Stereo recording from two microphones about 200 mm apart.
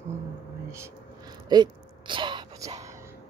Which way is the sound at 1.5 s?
25° right (ahead or behind).